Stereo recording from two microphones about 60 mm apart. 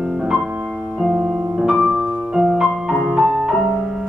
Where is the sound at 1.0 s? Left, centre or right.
Centre.